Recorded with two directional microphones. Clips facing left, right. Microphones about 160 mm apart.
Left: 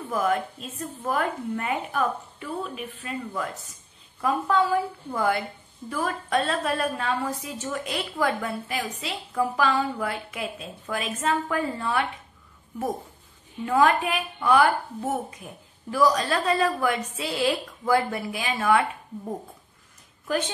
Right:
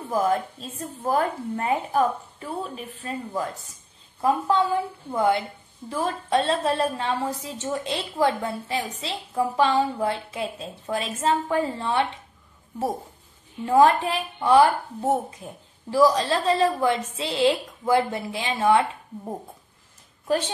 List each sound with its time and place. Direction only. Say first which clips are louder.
0.1 s a woman's voice: right 2 dB; 35° right (ahead or behind)
13.7 s a woman's voice: right 3 dB; 30° right (ahead or behind)
15.9 s a woman's voice: right 3 dB; 25° right (ahead or behind)